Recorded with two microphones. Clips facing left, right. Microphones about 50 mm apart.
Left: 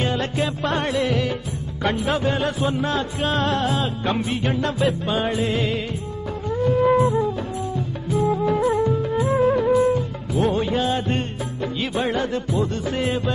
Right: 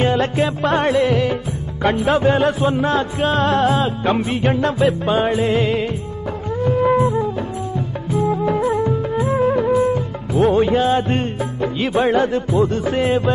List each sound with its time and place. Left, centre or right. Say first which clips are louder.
0.0 s music: right 6 dB; right